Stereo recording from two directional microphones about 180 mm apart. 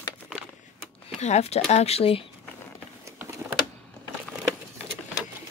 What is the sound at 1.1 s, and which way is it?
Speech, 40° left (ahead or behind).